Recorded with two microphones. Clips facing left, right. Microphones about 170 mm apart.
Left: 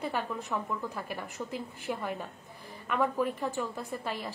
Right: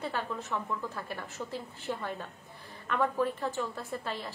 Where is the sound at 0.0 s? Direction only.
15° left (ahead or behind).